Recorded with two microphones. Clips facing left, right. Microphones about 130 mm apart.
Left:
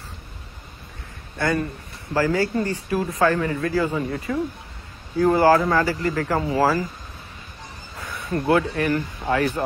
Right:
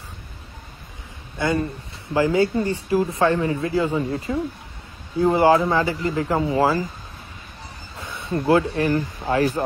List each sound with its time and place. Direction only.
1.4 s speech: 20° right (ahead or behind)
8.0 s a sound: 25° right (ahead or behind)
8.7 s speech: 30° right (ahead or behind)